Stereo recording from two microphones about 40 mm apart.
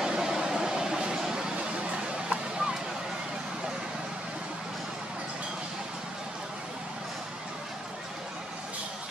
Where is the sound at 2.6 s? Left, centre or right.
Centre.